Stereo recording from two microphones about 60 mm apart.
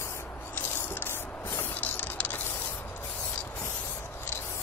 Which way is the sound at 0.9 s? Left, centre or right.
Left.